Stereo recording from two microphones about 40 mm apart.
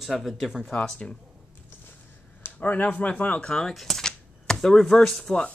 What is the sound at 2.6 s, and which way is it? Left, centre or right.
Speech, left.